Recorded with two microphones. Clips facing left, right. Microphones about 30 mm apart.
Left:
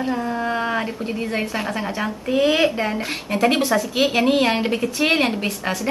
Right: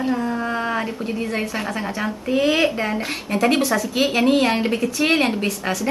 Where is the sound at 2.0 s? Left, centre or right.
Centre.